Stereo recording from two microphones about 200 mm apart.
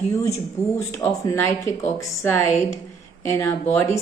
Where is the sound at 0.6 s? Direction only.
15° left (ahead or behind).